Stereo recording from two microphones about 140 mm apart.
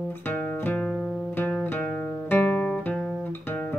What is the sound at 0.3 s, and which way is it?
Music, 10° left (ahead or behind).